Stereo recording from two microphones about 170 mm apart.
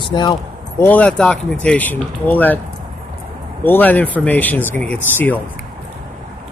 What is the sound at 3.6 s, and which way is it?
Speech, 10° left (ahead or behind).